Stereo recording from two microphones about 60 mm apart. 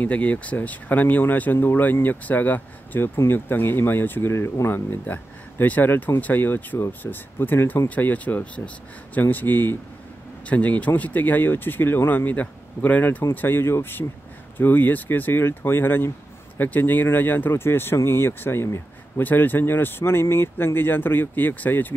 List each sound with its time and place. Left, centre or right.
0.0 s speech: left
4.3 s speech: left
5.0 s speech: left
14.6 s speech: left
19.2 s speech: left